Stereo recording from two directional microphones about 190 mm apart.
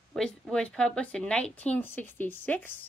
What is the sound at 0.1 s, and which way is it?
Speech, 5° left (ahead or behind).